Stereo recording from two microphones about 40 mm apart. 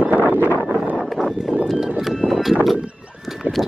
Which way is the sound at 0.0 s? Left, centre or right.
Right.